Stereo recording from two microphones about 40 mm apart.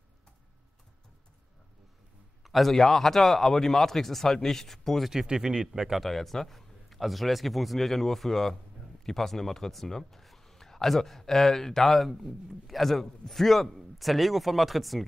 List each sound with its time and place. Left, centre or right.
2.4 s a man's voice: centre
5.1 s speech: centre
5.7 s speech: centre
6.0 s a man's voice: centre